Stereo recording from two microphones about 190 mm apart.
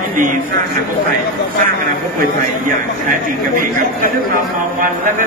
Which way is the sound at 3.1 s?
45° right (ahead or behind).